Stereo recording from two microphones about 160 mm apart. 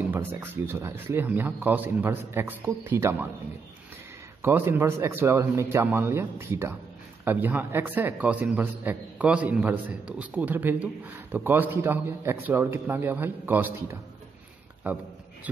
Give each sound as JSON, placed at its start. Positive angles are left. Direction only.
{"t": 0.1, "sound": "a man's voice", "side_deg": -15}
{"t": 4.4, "sound": "a man's voice", "side_deg": -15}